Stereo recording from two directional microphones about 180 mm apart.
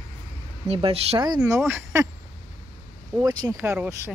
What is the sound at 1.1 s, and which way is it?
Speech, 20° right (ahead or behind).